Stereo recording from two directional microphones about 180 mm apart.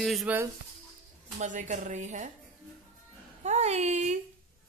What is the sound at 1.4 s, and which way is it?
Speech, 45° right (ahead or behind).